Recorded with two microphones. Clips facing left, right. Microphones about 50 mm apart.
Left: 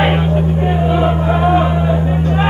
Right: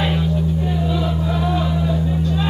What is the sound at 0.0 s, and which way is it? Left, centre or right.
Music, left.